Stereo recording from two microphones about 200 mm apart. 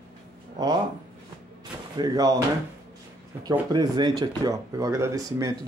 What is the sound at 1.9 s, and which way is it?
Speech, 20° right (ahead or behind).